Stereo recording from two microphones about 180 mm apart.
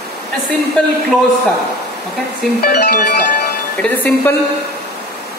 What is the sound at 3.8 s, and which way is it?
Speech, 10° left (ahead or behind).